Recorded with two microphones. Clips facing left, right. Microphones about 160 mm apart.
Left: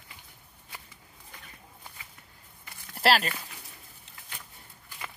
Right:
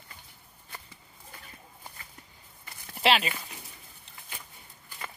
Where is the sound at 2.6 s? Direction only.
Centre (ahead or behind).